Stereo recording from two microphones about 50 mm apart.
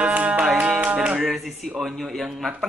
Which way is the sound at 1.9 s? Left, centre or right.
Centre.